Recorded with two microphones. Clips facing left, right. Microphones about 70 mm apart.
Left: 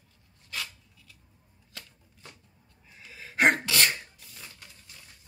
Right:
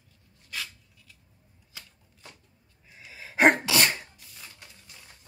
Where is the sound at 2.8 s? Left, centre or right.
Centre.